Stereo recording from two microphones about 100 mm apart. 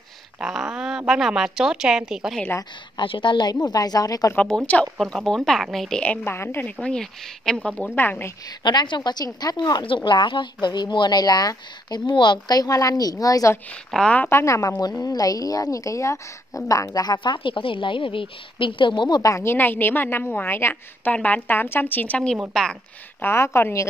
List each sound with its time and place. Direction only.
0.4 s a woman's voice: 10° right (ahead or behind)
3.0 s a woman's voice: 55° left (ahead or behind); by 4.3 s 40° left (ahead or behind)
4.5 s a woman's voice: 10° left (ahead or behind)
6.2 s a woman's voice: 25° left (ahead or behind)
6.8 s a woman's voice: 5° left (ahead or behind)
8.6 s a woman's voice: 50° left (ahead or behind); by 13.6 s 35° left (ahead or behind)
13.8 s a woman's voice: 10° left (ahead or behind)
14.3 s a woman's voice: 30° left (ahead or behind); by 19.3 s 45° left (ahead or behind)
19.3 s a woman's voice: 25° left (ahead or behind); by 22.8 s 5° left (ahead or behind)
23.2 s a woman's voice: 25° left (ahead or behind)